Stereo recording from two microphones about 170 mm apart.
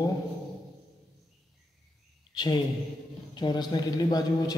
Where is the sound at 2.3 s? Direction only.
25° left (ahead or behind).